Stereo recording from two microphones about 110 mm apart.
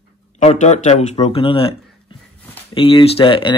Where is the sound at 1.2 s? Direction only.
55° left (ahead or behind).